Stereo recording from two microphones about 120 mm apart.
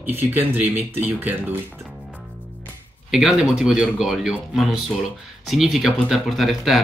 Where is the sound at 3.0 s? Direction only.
5° right (ahead or behind).